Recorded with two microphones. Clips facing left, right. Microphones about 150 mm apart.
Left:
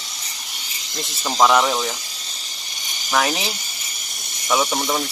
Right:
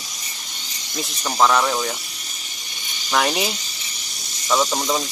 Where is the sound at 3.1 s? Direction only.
Centre (ahead or behind).